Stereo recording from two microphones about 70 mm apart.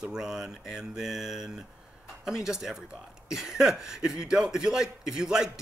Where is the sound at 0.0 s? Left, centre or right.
Centre.